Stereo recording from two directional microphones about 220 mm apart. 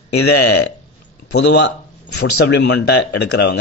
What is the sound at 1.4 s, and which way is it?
Speech, 50° left (ahead or behind).